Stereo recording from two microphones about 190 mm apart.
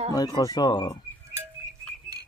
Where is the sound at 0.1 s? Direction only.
20° left (ahead or behind).